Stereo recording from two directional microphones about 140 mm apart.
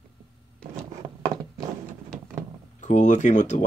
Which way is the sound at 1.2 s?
30° right (ahead or behind).